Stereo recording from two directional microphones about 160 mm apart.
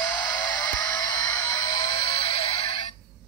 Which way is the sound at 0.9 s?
25° left (ahead or behind).